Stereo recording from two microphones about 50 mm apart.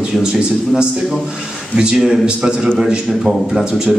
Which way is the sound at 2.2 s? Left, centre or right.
Centre.